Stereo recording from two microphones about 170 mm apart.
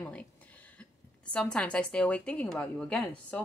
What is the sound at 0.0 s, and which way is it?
A woman's voice, 10° left (ahead or behind).